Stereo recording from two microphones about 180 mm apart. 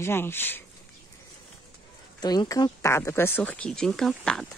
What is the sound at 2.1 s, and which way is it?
Speech, 20° left (ahead or behind).